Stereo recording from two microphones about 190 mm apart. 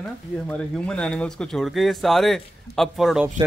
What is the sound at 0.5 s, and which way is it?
Speech, 5° left (ahead or behind).